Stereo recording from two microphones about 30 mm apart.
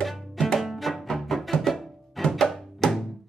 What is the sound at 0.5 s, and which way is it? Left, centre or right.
Music, centre.